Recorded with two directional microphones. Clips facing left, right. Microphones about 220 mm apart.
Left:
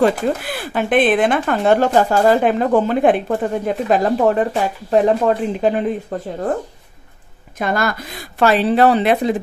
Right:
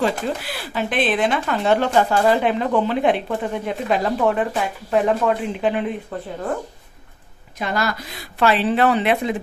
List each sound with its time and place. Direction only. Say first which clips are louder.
0.0 s speech: left 6 dB; 50° left (ahead or behind)
7.5 s a woman's voice: left 4 dB; 50° left (ahead or behind)